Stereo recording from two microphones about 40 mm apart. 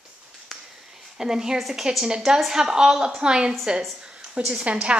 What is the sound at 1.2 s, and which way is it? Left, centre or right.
A woman's voice, centre.